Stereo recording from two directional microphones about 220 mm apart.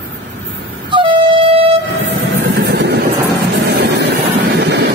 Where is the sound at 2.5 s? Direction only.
50° right (ahead or behind).